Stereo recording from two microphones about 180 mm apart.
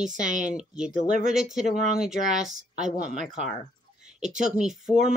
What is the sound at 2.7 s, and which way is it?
Speech, 40° right (ahead or behind).